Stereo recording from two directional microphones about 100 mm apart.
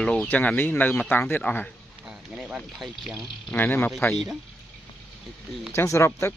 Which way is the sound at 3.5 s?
20° left (ahead or behind).